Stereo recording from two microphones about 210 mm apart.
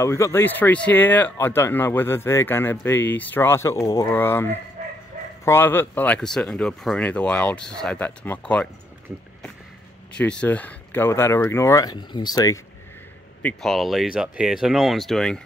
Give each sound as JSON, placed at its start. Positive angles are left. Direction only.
{"t": 0.0, "sound": "speech", "side_deg": 15}
{"t": 4.8, "sound": "dog", "side_deg": -40}
{"t": 5.4, "sound": "speech", "side_deg": 10}
{"t": 10.1, "sound": "speech", "side_deg": 5}
{"t": 13.4, "sound": "speech", "side_deg": 5}